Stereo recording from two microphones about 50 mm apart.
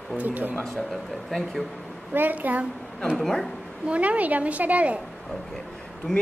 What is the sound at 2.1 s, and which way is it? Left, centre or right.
Speech, right.